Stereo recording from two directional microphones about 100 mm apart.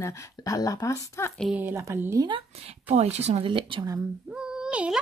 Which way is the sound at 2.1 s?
50° right (ahead or behind).